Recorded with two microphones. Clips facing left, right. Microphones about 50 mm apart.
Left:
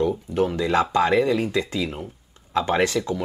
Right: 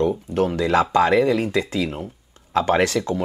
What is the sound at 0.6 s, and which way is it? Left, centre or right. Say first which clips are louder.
Speech: right 4 dB; right.